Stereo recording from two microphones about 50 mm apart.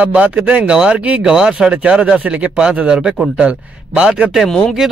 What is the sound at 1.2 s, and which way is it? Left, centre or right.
A man's voice, centre.